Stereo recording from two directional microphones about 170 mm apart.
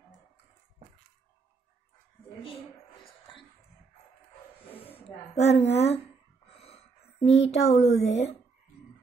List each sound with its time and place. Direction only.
5.3 s a woman's voice: 40° left (ahead or behind)
6.4 s a sound: 35° left (ahead or behind)
8.0 s speech: 40° left (ahead or behind)